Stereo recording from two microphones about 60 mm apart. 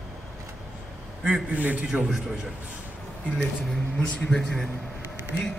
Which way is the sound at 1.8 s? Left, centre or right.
Centre.